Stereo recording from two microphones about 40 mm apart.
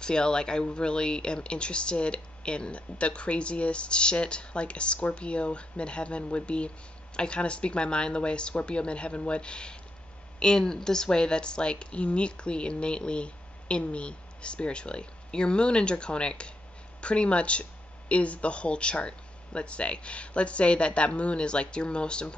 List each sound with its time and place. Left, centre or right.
0.0 s speech: left